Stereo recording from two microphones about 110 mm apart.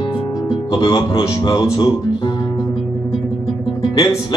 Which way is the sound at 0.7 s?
50° left (ahead or behind).